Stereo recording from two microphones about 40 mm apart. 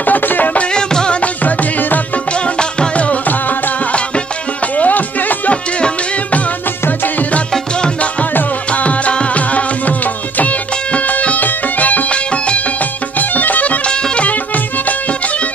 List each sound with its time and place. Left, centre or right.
0.0 s music: left
0.7 s music: centre
1.2 s music: left
3.0 s music: left
4.7 s music: left
8.7 s music: left
13.2 s music: left
13.8 s music: left